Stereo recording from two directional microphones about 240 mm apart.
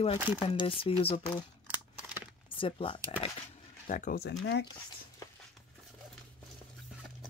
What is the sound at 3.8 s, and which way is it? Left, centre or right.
Speech, left.